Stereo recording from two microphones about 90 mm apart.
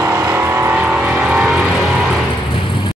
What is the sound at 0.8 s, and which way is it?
Vehicle, 10° right (ahead or behind).